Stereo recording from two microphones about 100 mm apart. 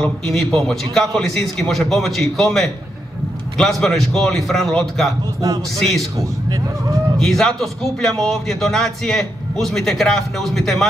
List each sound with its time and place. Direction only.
0.0 s a man's voice: 5° left (ahead or behind)
6.1 s speech: 35° right (ahead or behind)
7.2 s a man's voice: 5° left (ahead or behind)